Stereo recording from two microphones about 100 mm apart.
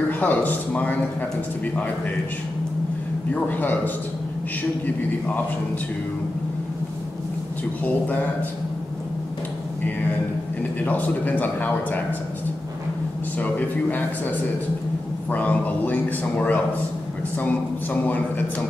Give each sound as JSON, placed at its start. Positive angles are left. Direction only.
{"t": 0.2, "sound": "a man's voice", "side_deg": 15}
{"t": 3.3, "sound": "a man's voice", "side_deg": 15}
{"t": 7.8, "sound": "a man's voice", "side_deg": 15}
{"t": 10.8, "sound": "a man's voice", "side_deg": 15}
{"t": 13.4, "sound": "a man's voice", "side_deg": 15}